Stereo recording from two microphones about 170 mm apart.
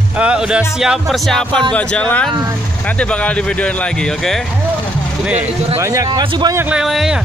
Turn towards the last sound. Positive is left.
turn(degrees=0)  # may be behind; listen again after turning